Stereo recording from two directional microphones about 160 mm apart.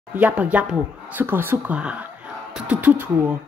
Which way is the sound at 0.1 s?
10° right (ahead or behind).